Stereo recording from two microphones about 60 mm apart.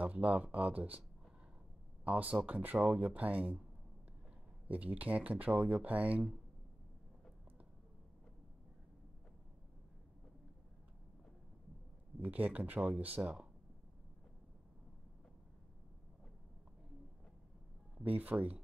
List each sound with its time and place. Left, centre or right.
0.0 s speech: right
2.0 s speech: right
4.6 s speech: right
12.2 s speech: right
18.0 s speech: right